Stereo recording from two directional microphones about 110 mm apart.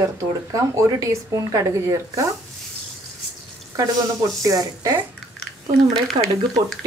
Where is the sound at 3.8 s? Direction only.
35° right (ahead or behind).